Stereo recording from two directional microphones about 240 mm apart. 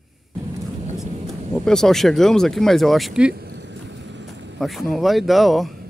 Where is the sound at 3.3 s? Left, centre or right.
Right.